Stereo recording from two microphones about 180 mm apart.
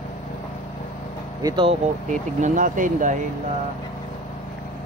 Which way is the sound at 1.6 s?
45° right (ahead or behind).